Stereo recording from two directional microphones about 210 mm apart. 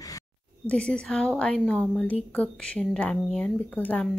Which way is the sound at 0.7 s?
5° left (ahead or behind).